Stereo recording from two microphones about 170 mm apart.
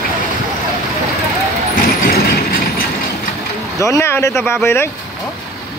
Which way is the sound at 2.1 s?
65° left (ahead or behind).